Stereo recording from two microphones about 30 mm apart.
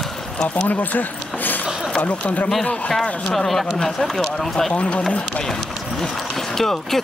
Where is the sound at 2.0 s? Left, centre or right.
Left.